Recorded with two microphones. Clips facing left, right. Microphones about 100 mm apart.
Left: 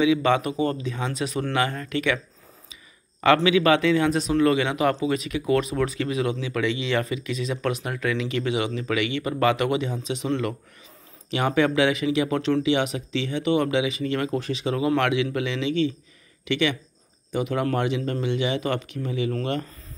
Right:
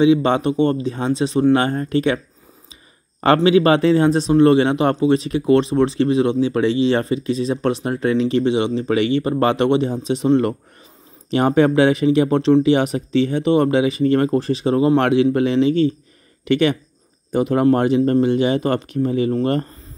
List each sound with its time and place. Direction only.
0.0 s speech: 30° right (ahead or behind)
2.7 s a sound: 35° right (ahead or behind)
3.4 s speech: 35° right (ahead or behind)